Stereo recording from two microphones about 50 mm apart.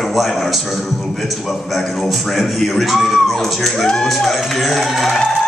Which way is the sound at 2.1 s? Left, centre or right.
Centre.